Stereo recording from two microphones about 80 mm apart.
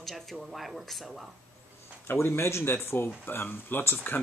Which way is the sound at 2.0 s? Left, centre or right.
Left.